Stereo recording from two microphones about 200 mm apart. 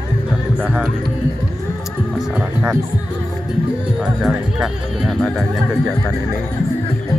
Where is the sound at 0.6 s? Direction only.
5° right (ahead or behind).